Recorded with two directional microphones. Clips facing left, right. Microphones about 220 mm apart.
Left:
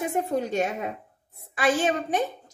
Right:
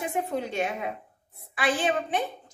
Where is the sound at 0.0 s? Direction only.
45° left (ahead or behind).